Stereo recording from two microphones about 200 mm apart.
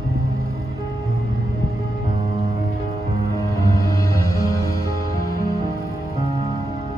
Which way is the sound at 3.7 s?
15° left (ahead or behind).